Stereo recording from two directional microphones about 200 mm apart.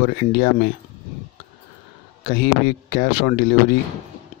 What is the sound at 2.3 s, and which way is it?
Speech, 50° left (ahead or behind).